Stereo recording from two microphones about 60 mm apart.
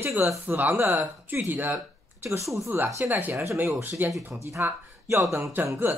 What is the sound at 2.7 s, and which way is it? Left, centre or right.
Speech, right.